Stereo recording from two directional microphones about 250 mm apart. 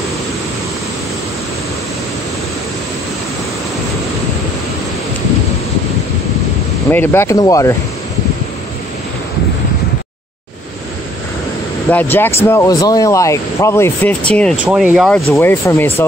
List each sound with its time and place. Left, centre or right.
6.9 s speech: centre
11.9 s speech: centre